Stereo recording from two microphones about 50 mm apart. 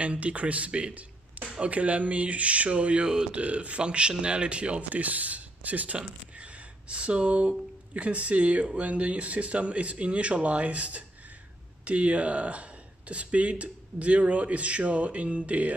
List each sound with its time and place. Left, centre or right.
0.0 s speech: right